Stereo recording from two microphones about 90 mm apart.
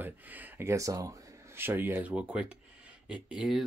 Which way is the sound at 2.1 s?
15° right (ahead or behind).